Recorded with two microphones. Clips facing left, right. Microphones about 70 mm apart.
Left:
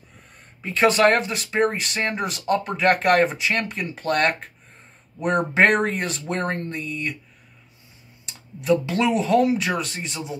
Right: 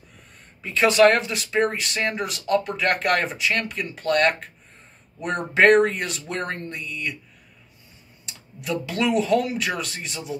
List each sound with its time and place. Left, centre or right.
0.6 s speech: left
8.3 s speech: left